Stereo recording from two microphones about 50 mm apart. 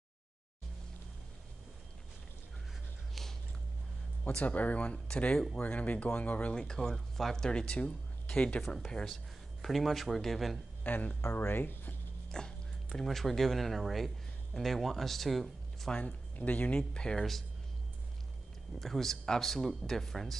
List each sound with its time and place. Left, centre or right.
3.2 s biting: centre
4.3 s speech: left
4.9 s speech: centre
5.6 s speech: left
6.5 s speech: centre
8.6 s speech: centre
10.8 s speech: left
11.3 s speech: left
12.3 s speech: centre
16.0 s speech: left
17.2 s speech: centre
18.8 s speech: centre